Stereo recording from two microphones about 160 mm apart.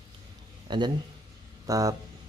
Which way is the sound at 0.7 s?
30° right (ahead or behind).